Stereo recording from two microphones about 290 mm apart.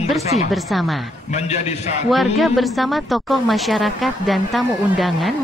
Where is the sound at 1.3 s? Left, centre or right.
Left.